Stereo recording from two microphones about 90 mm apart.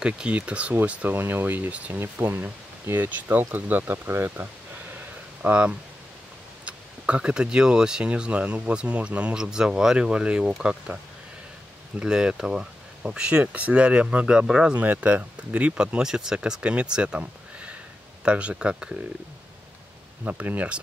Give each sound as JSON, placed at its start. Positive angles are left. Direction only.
{"t": 0.0, "sound": "speech", "side_deg": -10}
{"t": 12.0, "sound": "speech", "side_deg": -10}
{"t": 20.2, "sound": "speech", "side_deg": -15}